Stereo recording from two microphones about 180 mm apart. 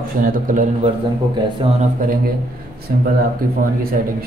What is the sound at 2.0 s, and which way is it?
Speech, 50° right (ahead or behind).